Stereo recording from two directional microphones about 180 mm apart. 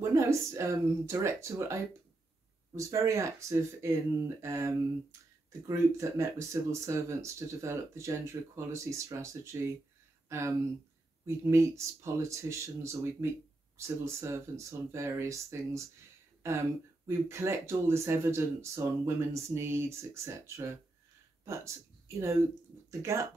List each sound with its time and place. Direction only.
0.0 s speech: 15° right (ahead or behind)
17.3 s speech: 15° right (ahead or behind)